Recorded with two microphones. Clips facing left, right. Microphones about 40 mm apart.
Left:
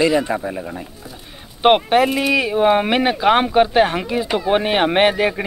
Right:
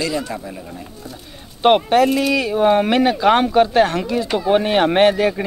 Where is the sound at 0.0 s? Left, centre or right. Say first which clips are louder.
Left 6 dB; left.